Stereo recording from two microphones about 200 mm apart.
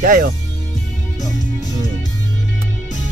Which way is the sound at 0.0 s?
45° right (ahead or behind).